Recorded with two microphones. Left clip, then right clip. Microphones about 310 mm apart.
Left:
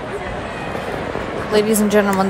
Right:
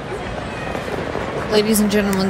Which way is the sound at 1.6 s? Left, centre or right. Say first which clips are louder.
Left 3 dB; centre.